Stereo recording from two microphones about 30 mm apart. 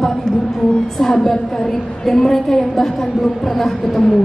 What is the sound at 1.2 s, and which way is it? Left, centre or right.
A woman's voice, centre.